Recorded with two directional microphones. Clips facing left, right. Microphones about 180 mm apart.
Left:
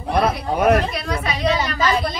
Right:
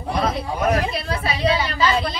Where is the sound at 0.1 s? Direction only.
60° left (ahead or behind).